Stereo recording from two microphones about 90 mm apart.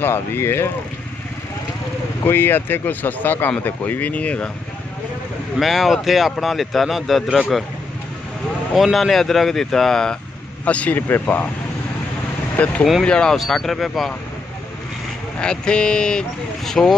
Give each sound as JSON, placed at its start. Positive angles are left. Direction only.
{"t": 0.0, "sound": "speech", "side_deg": 25}
{"t": 2.2, "sound": "speech", "side_deg": 25}
{"t": 5.6, "sound": "speech", "side_deg": 0}
{"t": 8.7, "sound": "speech", "side_deg": 0}
{"t": 10.6, "sound": "speech", "side_deg": 15}
{"t": 12.5, "sound": "speech", "side_deg": 15}
{"t": 15.3, "sound": "speech", "side_deg": 10}